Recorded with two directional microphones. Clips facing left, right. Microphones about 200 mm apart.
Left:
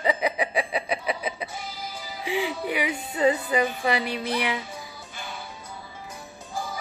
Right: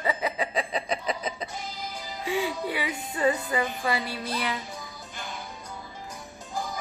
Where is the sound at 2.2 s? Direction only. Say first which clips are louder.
Left 1 dB; 15° left (ahead or behind).